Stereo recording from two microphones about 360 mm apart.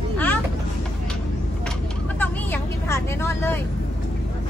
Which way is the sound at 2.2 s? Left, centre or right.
Centre.